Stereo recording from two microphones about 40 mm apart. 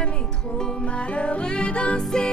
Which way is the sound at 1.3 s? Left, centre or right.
Left.